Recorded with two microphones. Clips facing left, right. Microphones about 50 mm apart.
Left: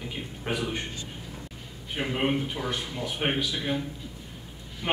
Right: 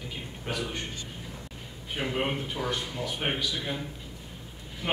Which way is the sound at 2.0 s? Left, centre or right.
Centre.